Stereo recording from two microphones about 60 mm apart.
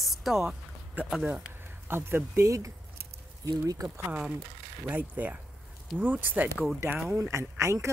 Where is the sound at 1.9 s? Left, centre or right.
Right.